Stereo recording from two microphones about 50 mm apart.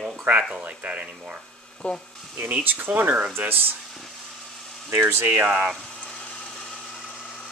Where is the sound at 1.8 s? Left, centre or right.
Left.